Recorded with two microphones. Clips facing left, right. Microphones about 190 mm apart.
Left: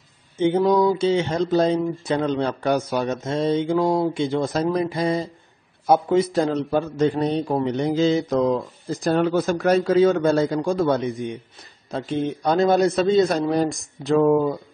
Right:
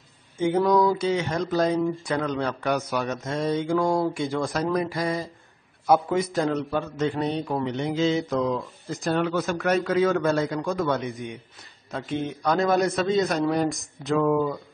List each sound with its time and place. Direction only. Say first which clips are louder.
0.4 s a man's voice: left 3 dB; 25° left (ahead or behind)